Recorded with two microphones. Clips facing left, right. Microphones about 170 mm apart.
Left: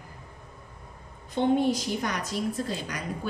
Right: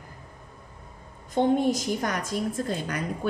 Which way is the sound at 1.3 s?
45° right (ahead or behind).